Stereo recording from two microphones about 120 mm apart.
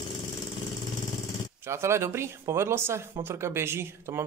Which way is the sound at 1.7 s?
20° right (ahead or behind).